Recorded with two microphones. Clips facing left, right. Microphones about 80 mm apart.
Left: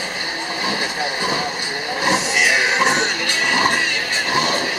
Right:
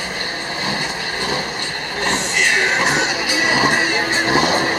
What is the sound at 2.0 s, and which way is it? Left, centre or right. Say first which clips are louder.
Music: left 1 dB; centre.